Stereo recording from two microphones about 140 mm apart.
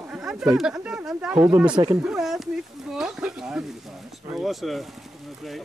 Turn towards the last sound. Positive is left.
turn(degrees=0)  # may be behind; listen again after turning